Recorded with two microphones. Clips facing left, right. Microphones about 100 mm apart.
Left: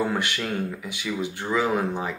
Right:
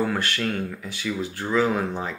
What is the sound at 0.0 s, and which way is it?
Speech, 15° left (ahead or behind).